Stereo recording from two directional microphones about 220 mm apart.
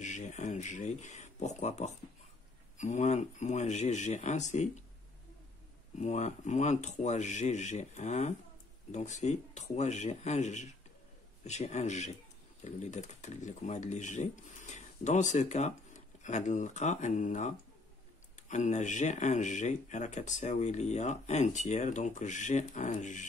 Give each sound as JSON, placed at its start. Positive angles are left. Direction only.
{"t": 0.0, "sound": "speech", "side_deg": 35}
{"t": 5.9, "sound": "speech", "side_deg": 30}